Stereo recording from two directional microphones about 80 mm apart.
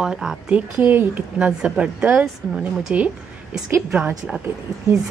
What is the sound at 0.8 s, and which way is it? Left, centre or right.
Speech, right.